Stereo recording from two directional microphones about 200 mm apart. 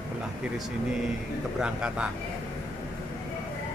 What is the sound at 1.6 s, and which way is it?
Speech, 5° right (ahead or behind).